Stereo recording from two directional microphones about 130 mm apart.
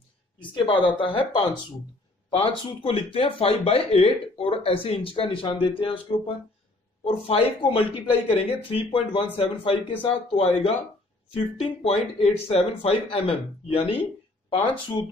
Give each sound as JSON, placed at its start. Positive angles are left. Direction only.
{"t": 0.4, "sound": "speech", "side_deg": 40}